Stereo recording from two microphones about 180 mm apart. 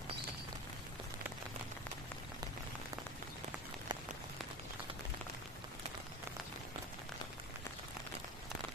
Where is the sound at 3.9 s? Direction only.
25° right (ahead or behind).